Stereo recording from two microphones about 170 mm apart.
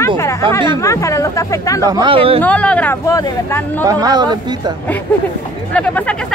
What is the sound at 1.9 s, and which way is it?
Speech, 30° right (ahead or behind).